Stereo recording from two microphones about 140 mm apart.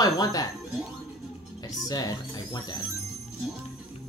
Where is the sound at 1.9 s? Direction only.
30° left (ahead or behind).